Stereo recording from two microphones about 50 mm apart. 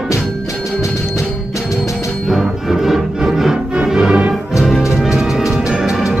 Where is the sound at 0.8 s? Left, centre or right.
Left.